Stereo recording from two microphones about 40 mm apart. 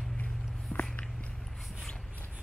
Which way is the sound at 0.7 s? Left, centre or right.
Left.